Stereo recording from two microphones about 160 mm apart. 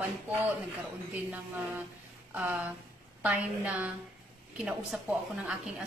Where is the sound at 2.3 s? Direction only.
10° right (ahead or behind).